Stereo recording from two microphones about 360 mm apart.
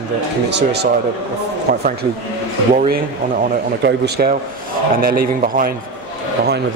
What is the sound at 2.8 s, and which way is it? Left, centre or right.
A man's voice, right.